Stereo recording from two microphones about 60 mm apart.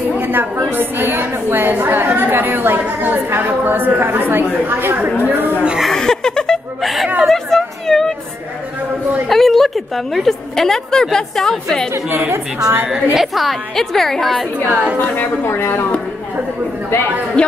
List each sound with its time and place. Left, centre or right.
0.2 s a sound: right
0.7 s a woman's voice: right
5.8 s laughter: centre
6.8 s a woman's voice: centre
9.3 s a woman's voice: centre
12.8 s a woman's voice: centre
14.7 s a woman's voice: right
15.0 s speech: left
17.4 s a woman's voice: centre